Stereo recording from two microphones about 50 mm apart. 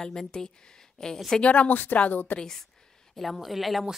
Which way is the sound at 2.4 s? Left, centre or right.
Centre.